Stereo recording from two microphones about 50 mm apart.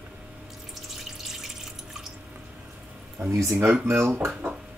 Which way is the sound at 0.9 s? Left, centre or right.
Centre.